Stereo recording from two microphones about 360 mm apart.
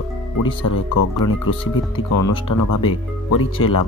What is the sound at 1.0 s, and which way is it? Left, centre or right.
Speech, left.